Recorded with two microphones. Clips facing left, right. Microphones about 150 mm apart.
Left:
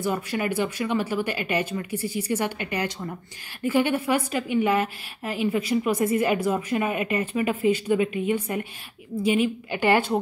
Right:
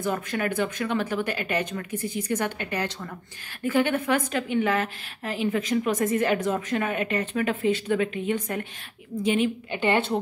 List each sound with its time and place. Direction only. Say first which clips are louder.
0.0 s a woman's voice: left 1 dB; 10° left (ahead or behind)
9.7 s a woman's voice: left 3 dB; 25° right (ahead or behind)